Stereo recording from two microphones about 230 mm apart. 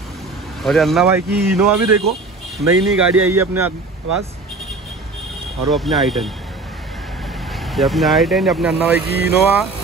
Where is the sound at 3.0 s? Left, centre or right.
Right.